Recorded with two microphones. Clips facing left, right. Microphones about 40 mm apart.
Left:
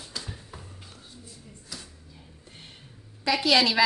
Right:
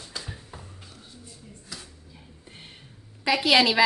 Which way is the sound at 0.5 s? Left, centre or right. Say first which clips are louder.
Right 1 dB; centre.